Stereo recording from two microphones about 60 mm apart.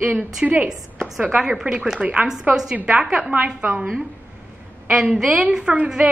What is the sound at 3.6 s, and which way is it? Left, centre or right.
Speech, right.